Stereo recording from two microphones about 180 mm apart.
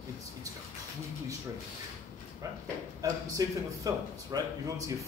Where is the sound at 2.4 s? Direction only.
20° right (ahead or behind).